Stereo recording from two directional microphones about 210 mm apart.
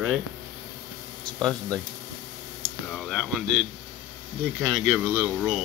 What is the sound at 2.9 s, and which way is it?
Speech, centre (ahead or behind).